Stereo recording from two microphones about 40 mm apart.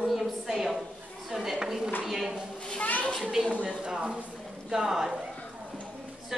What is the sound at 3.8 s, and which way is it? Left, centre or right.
A woman's voice, right.